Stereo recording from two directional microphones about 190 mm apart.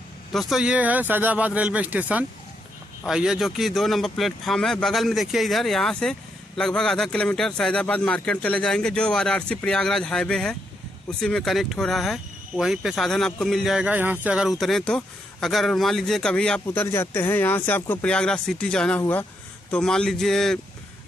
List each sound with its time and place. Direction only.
0.3 s speech: centre (ahead or behind)